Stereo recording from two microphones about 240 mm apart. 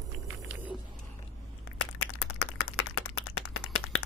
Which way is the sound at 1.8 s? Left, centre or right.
Left.